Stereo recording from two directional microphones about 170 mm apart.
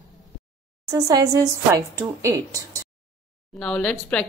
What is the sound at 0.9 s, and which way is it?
A woman's voice, 20° right (ahead or behind).